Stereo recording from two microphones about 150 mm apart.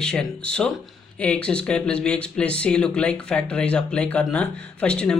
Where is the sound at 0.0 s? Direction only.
5° left (ahead or behind).